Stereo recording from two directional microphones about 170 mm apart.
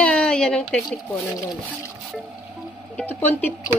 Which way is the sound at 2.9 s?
10° left (ahead or behind).